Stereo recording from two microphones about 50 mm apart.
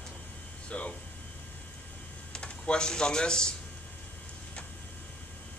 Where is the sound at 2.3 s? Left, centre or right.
Centre.